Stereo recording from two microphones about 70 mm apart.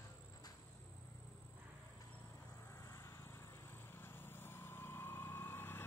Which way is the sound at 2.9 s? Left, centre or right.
Left.